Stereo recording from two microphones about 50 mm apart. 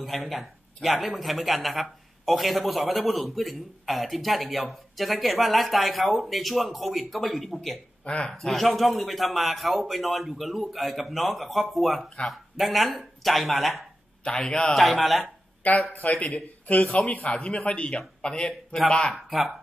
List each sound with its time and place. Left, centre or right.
0.0 s a man's voice: centre
8.0 s speech: left
8.3 s a man's voice: centre
14.2 s a man's voice: centre
14.7 s a man's voice: centre
15.6 s a man's voice: left; by 19.1 s centre
19.1 s a man's voice: centre